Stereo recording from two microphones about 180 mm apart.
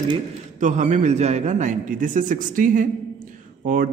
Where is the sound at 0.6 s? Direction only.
40° right (ahead or behind).